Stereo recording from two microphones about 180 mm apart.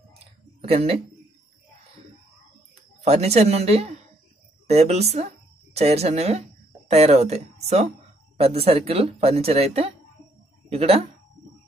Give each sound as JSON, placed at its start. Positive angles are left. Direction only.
{"t": 0.6, "sound": "speech", "side_deg": -35}
{"t": 3.0, "sound": "speech", "side_deg": -35}